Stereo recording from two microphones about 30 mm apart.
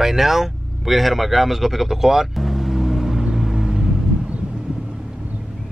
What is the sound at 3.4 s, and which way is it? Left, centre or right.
Vehicle, centre.